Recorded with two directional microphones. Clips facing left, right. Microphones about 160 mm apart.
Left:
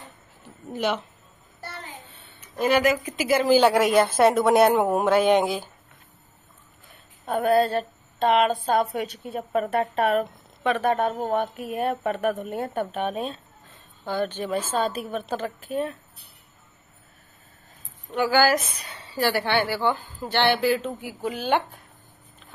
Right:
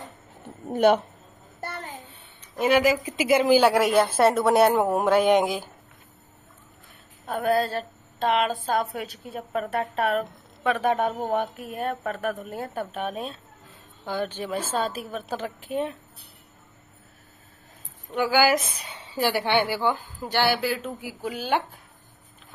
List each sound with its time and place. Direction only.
0.7 s speech: 50° right (ahead or behind)
1.6 s a sound: 50° right (ahead or behind)
2.7 s speech: 25° right (ahead or behind)
7.2 s a woman's voice: centre (ahead or behind)
10.8 s speech: 10° right (ahead or behind)
11.5 s a woman's voice: centre (ahead or behind)
14.0 s speech: 10° right (ahead or behind)
18.3 s speech: 15° right (ahead or behind)